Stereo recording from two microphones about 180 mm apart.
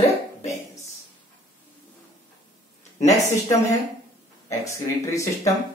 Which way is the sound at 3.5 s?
20° left (ahead or behind).